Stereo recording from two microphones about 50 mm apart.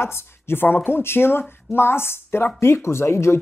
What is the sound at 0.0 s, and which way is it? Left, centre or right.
Speech, left.